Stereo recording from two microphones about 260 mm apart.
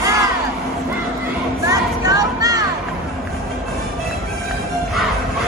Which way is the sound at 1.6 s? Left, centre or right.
Centre.